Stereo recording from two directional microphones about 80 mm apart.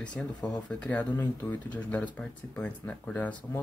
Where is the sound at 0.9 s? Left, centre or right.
Left.